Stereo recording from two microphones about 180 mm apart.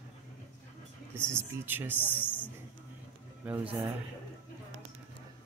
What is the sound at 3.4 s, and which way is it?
Speech, 10° right (ahead or behind).